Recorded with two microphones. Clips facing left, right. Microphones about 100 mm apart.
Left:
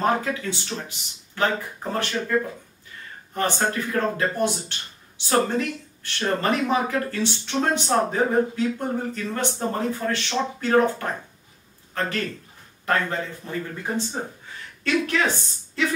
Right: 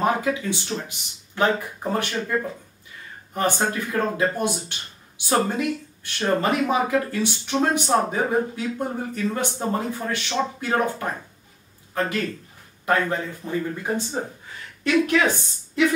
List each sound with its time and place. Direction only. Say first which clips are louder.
0.0 s speech: right 1 dB; 15° right (ahead or behind)
3.3 s a woman's voice: right 1 dB; 15° right (ahead or behind)